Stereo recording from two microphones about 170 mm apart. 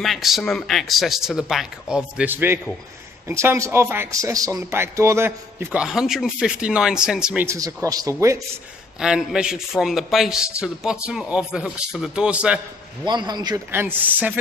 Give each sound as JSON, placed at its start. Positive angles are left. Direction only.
{"t": 0.0, "sound": "a man's voice", "side_deg": 0}
{"t": 7.4, "sound": "speech", "side_deg": -20}
{"t": 9.0, "sound": "a man's voice", "side_deg": -5}
{"t": 13.0, "sound": "speech", "side_deg": -25}
{"t": 13.7, "sound": "a man's voice", "side_deg": -10}